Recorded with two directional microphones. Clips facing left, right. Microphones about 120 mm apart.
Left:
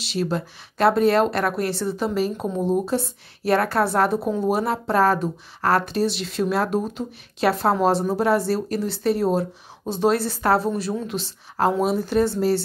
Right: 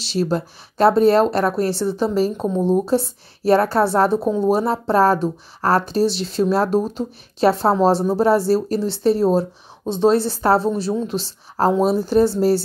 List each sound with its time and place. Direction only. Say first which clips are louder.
0.0 s a woman's voice: right 4 dB; 35° right (ahead or behind)
2.3 s speech: right 4 dB; 20° right (ahead or behind)
2.7 s a woman's voice: right 4 dB; 35° right (ahead or behind)